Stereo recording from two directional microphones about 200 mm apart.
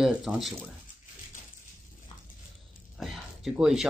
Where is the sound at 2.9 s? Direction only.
Centre (ahead or behind).